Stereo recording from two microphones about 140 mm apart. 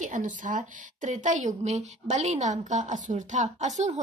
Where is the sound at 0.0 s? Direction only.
65° right (ahead or behind).